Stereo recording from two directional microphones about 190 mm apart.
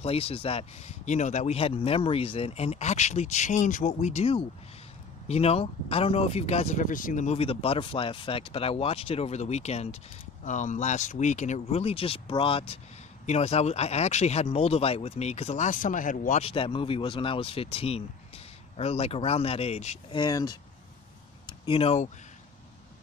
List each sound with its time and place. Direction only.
0.0 s speech: 30° left (ahead or behind)